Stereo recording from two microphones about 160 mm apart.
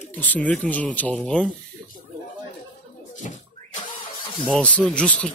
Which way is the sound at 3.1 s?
50° left (ahead or behind).